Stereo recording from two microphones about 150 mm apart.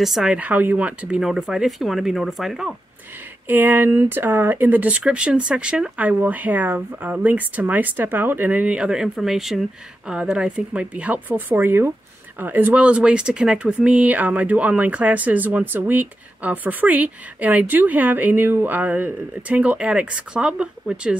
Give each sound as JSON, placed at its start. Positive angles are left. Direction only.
{"t": 0.0, "sound": "speech", "side_deg": 0}
{"t": 3.4, "sound": "speech", "side_deg": -10}